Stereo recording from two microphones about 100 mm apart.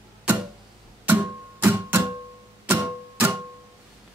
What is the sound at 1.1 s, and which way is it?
Music, 20° right (ahead or behind).